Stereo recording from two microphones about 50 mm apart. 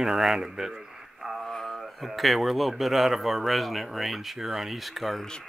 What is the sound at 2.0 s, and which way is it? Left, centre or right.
A man's voice, centre.